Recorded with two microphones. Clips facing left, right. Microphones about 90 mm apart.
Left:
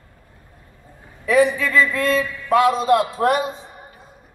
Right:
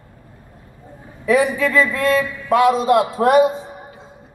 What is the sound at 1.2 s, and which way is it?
A man's voice, 20° right (ahead or behind).